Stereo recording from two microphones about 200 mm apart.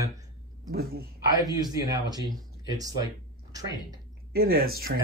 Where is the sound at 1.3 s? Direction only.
20° right (ahead or behind).